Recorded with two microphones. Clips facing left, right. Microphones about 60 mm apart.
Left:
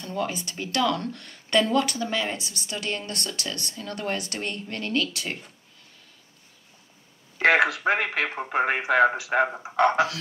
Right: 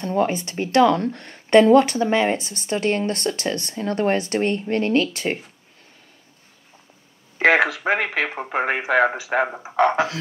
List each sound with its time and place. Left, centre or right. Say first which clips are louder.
0.0 s speech: right 8 dB; right
7.9 s speech: right 3 dB; centre